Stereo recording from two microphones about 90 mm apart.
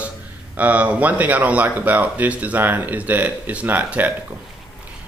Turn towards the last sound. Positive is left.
turn(degrees=-20)  # may be behind; listen again after turning